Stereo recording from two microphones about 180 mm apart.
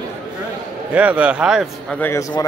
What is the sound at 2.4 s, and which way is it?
Speech, 20° left (ahead or behind).